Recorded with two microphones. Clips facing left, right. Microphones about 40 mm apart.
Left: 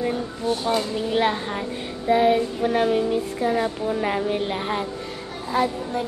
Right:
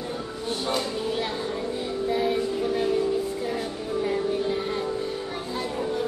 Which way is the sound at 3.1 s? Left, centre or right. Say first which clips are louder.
Left 4 dB; left.